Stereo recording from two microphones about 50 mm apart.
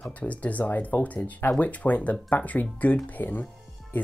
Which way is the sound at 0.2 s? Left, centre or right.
Left.